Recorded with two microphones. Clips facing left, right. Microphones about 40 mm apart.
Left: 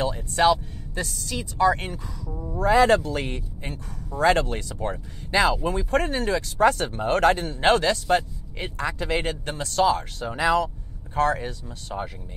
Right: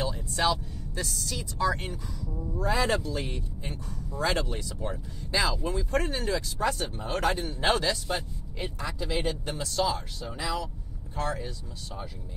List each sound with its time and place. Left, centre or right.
0.0 s music: left
1.0 s a woman's voice: centre
1.4 s speech: left